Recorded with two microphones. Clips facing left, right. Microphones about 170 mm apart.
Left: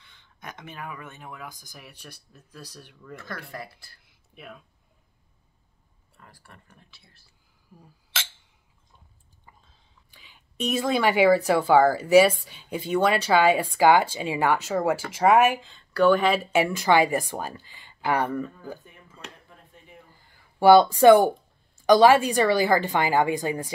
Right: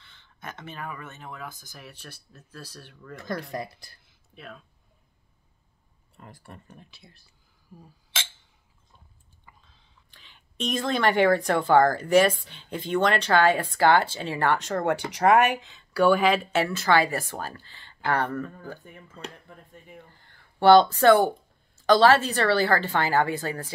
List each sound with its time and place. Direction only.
0.0 s speech: 15° left (ahead or behind)
3.2 s speech: 15° right (ahead or behind)
4.4 s speech: 10° left (ahead or behind)
6.1 s speech: 20° right (ahead or behind)
10.1 s speech: 10° left (ahead or behind)
16.5 s speech: 15° left (ahead or behind)
20.2 s a sound: 10° left (ahead or behind)
21.7 s speech: 15° left (ahead or behind)